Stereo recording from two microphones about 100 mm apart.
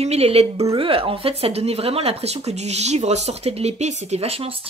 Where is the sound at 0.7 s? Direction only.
70° right (ahead or behind).